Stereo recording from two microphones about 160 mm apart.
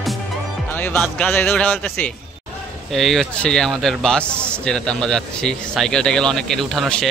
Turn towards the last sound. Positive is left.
turn(degrees=0)  # may be behind; listen again after turning